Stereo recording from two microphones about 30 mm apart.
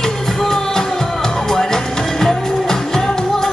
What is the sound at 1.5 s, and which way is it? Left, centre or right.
Music, centre.